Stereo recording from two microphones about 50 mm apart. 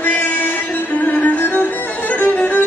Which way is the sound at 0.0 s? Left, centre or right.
Left.